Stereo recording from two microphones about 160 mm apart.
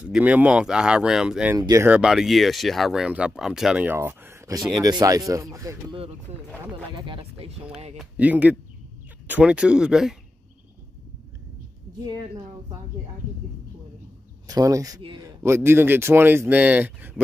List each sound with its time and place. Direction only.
0.0 s speech: 10° right (ahead or behind)
1.6 s speech: 20° right (ahead or behind)
1.9 s speech: 5° right (ahead or behind); by 5.9 s 20° right (ahead or behind)
7.0 s speech: 35° right (ahead or behind)
8.0 s speech: 10° right (ahead or behind)
14.5 s speech: 20° right (ahead or behind)
15.2 s speech: 15° right (ahead or behind)